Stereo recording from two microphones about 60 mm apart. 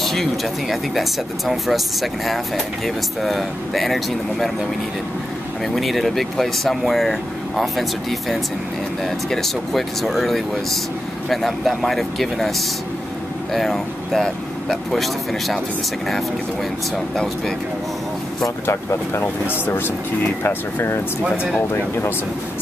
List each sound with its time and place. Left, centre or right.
0.0 s speech: centre
5.8 s speech: centre
16.9 s speech: centre
18.7 s speech: left
21.2 s speech: centre